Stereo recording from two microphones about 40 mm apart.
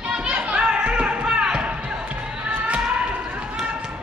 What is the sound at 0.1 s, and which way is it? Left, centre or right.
Music, right.